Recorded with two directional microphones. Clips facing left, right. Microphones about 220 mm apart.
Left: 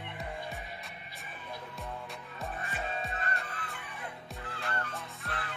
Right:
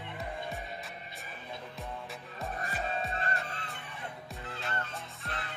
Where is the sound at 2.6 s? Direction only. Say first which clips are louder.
Right 3 dB; 35° right (ahead or behind).